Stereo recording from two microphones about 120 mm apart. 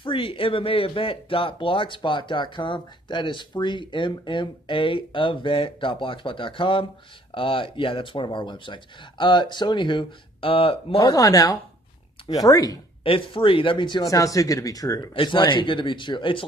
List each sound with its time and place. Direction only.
0.0 s speech: 45° left (ahead or behind)
11.0 s speech: 30° left (ahead or behind)
13.0 s speech: 50° left (ahead or behind); by 15.0 s 30° left (ahead or behind)
15.1 s speech: 40° left (ahead or behind)